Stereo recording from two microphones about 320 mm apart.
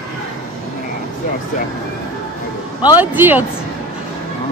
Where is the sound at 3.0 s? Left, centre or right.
Centre.